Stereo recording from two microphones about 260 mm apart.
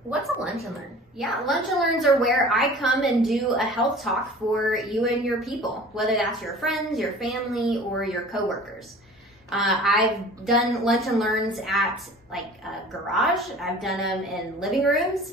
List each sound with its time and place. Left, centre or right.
0.4 s speech: centre